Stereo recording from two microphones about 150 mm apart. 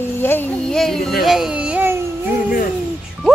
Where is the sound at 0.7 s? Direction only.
Centre (ahead or behind).